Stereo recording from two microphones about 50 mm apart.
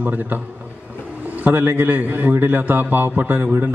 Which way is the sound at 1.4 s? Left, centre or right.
Right.